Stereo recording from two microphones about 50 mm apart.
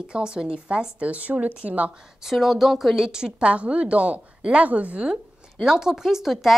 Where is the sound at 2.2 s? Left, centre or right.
Centre.